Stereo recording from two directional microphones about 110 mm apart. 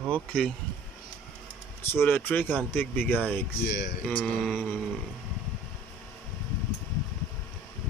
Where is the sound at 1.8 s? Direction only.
20° left (ahead or behind).